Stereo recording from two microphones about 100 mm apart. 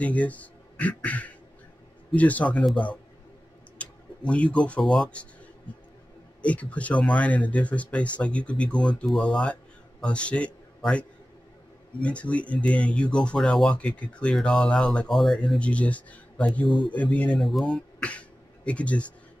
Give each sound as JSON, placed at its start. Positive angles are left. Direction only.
{"t": 0.0, "sound": "speech", "side_deg": 15}
{"t": 2.7, "sound": "speech", "side_deg": 55}
{"t": 3.7, "sound": "speech", "side_deg": 10}
{"t": 6.4, "sound": "a man's voice", "side_deg": 15}
{"t": 16.6, "sound": "speech", "side_deg": 55}
{"t": 16.9, "sound": "speech", "side_deg": 15}
{"t": 17.5, "sound": "speech", "side_deg": 0}